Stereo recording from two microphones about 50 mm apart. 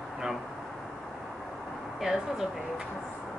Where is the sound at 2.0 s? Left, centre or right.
Centre.